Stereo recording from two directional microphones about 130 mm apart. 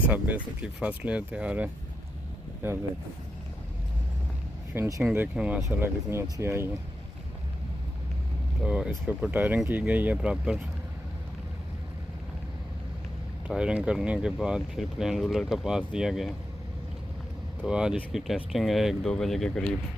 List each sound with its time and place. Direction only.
0.1 s speech: 10° right (ahead or behind)
4.7 s speech: 25° right (ahead or behind)
5.0 s speech: 10° right (ahead or behind)
8.6 s speech: 5° right (ahead or behind)
13.5 s speech: 5° right (ahead or behind)
17.6 s speech: 5° right (ahead or behind)